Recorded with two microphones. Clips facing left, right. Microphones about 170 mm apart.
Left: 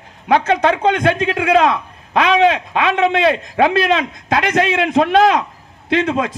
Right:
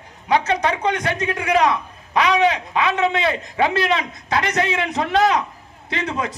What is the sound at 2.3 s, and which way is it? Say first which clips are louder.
A man's voice: left 6 dB; 75° left (ahead or behind).